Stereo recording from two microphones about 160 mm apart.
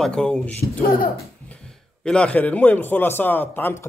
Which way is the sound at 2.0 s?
5° left (ahead or behind).